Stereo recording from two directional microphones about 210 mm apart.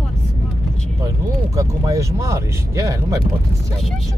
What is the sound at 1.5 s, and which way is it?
Speech, 15° right (ahead or behind).